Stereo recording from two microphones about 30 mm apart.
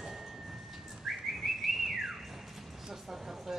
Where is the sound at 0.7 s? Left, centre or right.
Centre.